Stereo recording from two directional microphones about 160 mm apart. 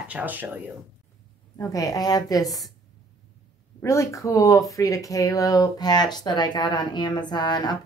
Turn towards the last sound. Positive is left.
turn(degrees=25)  # may be behind; listen again after turning